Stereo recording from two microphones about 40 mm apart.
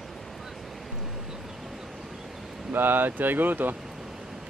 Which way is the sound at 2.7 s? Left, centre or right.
Right.